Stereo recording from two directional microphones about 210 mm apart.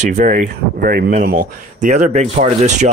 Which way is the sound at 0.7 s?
45° right (ahead or behind).